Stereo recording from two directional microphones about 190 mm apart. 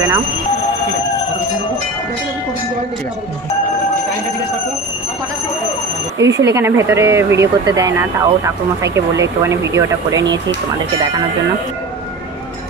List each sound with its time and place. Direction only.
6.1 s speech: 70° right (ahead or behind)
6.4 s speech: 15° right (ahead or behind)